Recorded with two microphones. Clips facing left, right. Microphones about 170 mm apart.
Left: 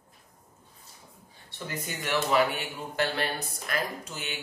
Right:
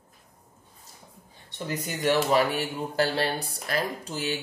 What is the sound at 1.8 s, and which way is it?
Speech, 40° right (ahead or behind).